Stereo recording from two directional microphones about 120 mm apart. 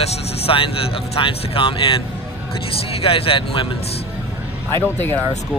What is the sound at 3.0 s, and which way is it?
Speech, 50° left (ahead or behind).